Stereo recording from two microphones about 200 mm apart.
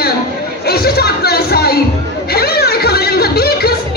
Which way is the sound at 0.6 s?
50° left (ahead or behind).